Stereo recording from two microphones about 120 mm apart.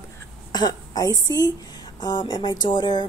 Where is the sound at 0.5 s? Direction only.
35° left (ahead or behind).